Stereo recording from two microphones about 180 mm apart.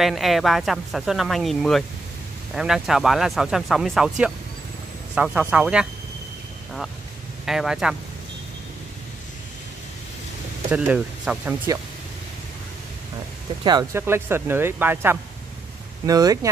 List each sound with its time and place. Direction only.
0.0 s speech: centre (ahead or behind)
7.4 s speech: centre (ahead or behind)
10.7 s speech: 5° right (ahead or behind)
13.9 s speech: 15° right (ahead or behind)